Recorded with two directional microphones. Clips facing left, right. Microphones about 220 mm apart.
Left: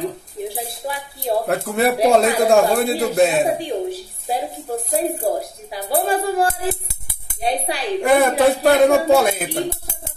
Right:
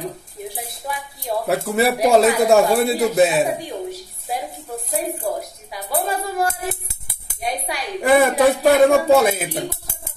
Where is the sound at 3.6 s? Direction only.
30° left (ahead or behind).